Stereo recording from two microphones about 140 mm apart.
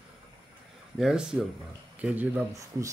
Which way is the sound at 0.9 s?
5° right (ahead or behind).